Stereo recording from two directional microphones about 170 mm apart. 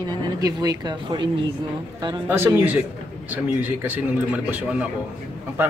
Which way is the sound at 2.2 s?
10° right (ahead or behind).